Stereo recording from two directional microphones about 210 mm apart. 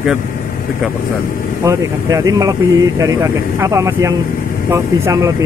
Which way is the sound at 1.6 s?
15° right (ahead or behind).